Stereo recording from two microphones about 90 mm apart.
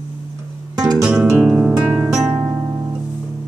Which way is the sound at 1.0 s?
10° right (ahead or behind).